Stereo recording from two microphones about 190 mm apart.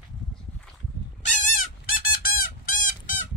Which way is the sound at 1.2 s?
40° left (ahead or behind).